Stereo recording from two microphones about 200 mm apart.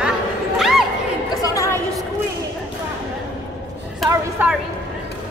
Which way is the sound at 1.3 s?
15° left (ahead or behind).